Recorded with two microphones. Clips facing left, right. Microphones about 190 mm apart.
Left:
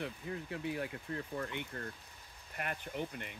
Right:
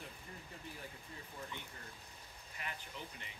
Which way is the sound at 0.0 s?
80° left.